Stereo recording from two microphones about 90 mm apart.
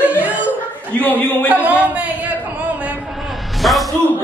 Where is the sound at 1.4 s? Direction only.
20° right (ahead or behind).